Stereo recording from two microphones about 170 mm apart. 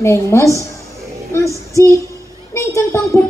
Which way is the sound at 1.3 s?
15° left (ahead or behind).